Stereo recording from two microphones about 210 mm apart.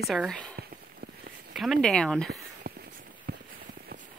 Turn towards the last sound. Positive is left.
turn(degrees=-45)  # may be behind; listen again after turning